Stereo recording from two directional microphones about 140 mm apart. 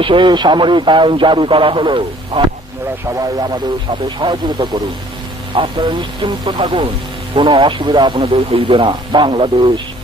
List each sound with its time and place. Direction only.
0.0 s a man's voice: 35° right (ahead or behind)